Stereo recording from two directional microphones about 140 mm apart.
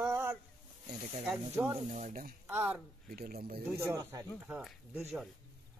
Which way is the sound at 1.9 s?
60° right (ahead or behind).